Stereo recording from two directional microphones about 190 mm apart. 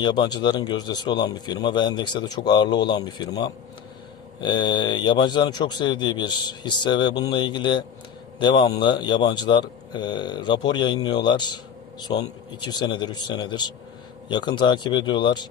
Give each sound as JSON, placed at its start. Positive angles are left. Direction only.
{"t": 0.0, "sound": "speech", "side_deg": 25}